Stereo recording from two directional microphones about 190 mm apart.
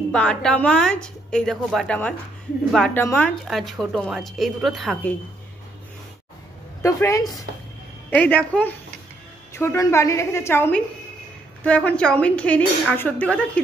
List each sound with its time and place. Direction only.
0.1 s a woman's voice: 5° left (ahead or behind)
3.4 s a woman's voice: centre (ahead or behind)
6.8 s speech: 15° left (ahead or behind)